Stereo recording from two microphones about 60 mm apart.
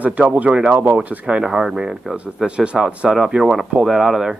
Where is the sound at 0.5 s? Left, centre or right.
Centre.